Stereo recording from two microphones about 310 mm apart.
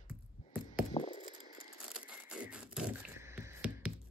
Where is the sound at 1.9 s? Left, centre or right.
Centre.